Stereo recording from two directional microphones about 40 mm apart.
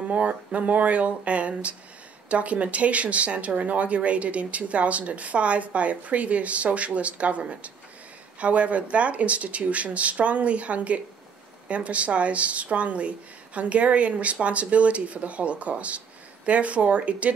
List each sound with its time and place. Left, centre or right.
0.1 s speech: right